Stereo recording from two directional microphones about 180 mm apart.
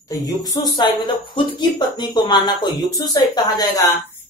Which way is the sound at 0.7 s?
25° left (ahead or behind).